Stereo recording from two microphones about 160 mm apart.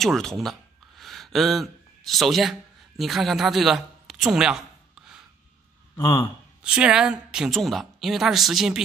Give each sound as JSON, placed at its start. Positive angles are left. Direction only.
{"t": 0.0, "sound": "a sound", "side_deg": 0}
{"t": 3.0, "sound": "speech", "side_deg": 0}
{"t": 5.9, "sound": "a man's voice", "side_deg": 25}
{"t": 6.6, "sound": "a woman's voice", "side_deg": -5}